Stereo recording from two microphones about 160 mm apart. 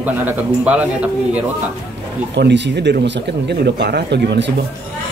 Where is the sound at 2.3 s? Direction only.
90° right.